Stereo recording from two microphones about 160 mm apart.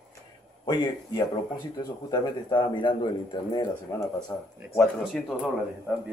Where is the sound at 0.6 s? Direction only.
30° left (ahead or behind).